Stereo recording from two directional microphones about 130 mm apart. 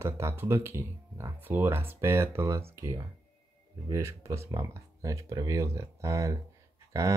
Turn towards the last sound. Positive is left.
turn(degrees=-25)  # may be behind; listen again after turning